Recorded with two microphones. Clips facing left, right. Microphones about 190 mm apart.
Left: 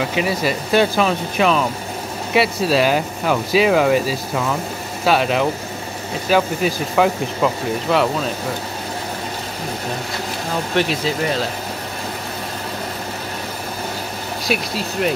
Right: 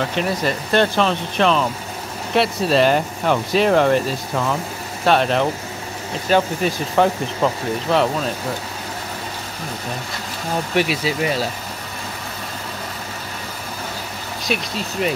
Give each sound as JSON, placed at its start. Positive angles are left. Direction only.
{"t": 0.0, "sound": "speech", "side_deg": 5}
{"t": 10.8, "sound": "speech", "side_deg": -10}
{"t": 14.5, "sound": "speech", "side_deg": 0}